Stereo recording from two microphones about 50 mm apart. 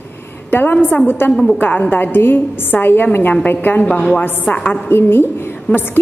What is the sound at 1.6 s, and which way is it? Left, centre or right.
A woman's voice, left.